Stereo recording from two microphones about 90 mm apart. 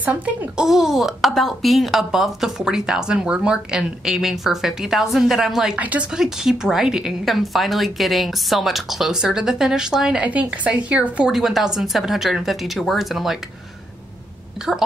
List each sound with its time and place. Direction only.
0.0 s a child's voice: 20° right (ahead or behind)
0.6 s a woman's voice: centre (ahead or behind)
5.8 s a woman's voice: 15° right (ahead or behind)